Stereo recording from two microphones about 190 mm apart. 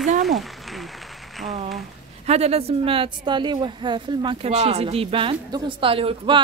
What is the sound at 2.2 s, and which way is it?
A woman's voice, 35° right (ahead or behind).